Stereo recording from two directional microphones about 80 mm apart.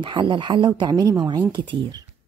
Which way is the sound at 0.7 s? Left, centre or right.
Right.